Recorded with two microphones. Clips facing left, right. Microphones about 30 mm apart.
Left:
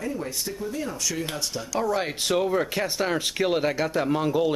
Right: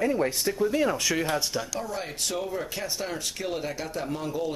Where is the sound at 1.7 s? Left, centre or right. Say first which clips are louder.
Left 7 dB; left.